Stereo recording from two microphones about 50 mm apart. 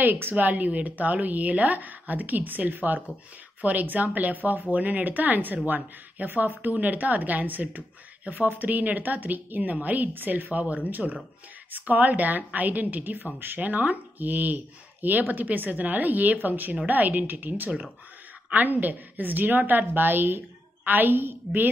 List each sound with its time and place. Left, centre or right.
0.0 s a woman's voice: right